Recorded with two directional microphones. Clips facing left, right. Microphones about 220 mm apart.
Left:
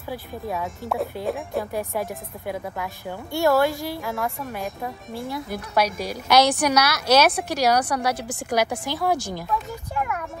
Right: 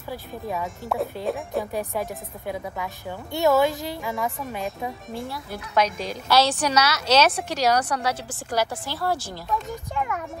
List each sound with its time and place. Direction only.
0.5 s speech: centre (ahead or behind)
1.7 s a woman's voice: 10° left (ahead or behind)
2.5 s speech: centre (ahead or behind)
3.3 s a woman's voice: 20° right (ahead or behind)
4.0 s speech: centre (ahead or behind)
5.3 s a woman's voice: 15° left (ahead or behind)
9.5 s speech: 5° left (ahead or behind)